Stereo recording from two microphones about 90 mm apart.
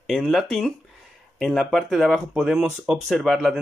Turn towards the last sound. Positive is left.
turn(degrees=0)  # may be behind; listen again after turning